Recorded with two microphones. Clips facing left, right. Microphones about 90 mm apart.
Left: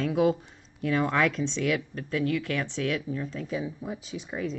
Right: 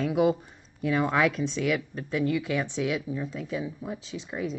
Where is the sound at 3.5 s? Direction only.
Centre (ahead or behind).